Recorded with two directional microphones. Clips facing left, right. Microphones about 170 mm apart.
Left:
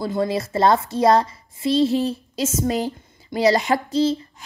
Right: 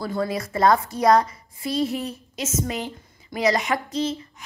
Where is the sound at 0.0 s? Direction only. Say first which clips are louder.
Left 4 dB; 25° left (ahead or behind).